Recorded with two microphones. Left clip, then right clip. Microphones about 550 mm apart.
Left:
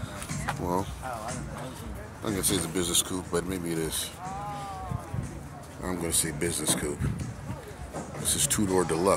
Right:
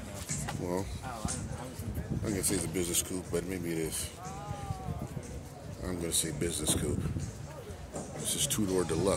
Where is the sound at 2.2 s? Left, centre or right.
Right.